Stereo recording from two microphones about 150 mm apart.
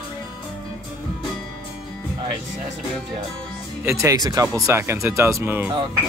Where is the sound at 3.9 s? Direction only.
20° right (ahead or behind).